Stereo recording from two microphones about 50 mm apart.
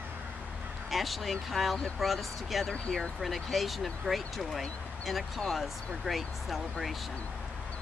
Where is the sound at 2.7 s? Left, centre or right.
Centre.